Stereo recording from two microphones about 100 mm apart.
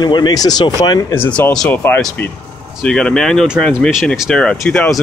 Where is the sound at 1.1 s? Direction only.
15° left (ahead or behind).